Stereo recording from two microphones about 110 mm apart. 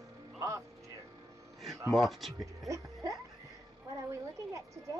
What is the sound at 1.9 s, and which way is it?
Speech, centre (ahead or behind).